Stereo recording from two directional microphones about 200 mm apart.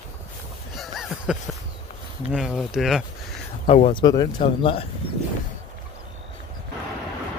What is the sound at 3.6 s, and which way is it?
Speech, 30° left (ahead or behind).